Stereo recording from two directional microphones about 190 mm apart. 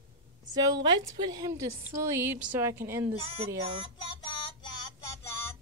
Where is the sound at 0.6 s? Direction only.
20° right (ahead or behind).